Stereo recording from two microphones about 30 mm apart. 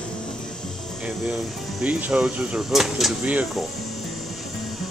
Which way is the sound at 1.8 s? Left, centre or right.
Right.